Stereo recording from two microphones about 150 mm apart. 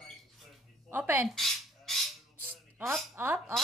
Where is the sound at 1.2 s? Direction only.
Centre (ahead or behind).